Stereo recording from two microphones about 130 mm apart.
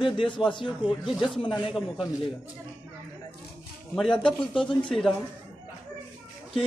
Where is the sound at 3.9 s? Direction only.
5° left (ahead or behind).